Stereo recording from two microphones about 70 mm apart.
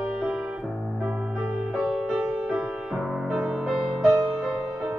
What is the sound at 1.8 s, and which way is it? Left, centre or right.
Music, centre.